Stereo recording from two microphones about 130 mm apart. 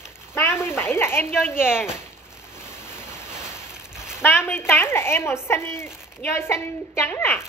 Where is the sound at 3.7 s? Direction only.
5° right (ahead or behind).